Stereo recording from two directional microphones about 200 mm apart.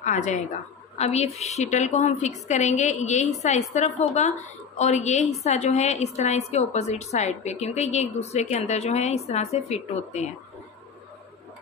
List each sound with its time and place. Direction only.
0.0 s a woman's voice: 40° left (ahead or behind)